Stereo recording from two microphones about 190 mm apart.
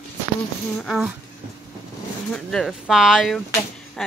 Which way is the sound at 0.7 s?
Centre (ahead or behind).